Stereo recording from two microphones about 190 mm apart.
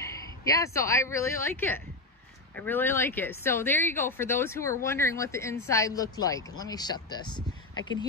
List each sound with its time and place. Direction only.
0.0 s speech: 15° left (ahead or behind)